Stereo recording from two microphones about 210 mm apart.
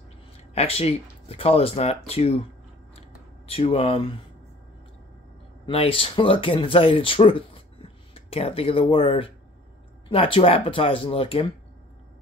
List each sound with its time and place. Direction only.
0.6 s speech: 30° left (ahead or behind)
3.0 s a sound: 30° left (ahead or behind)
5.7 s speech: 25° left (ahead or behind)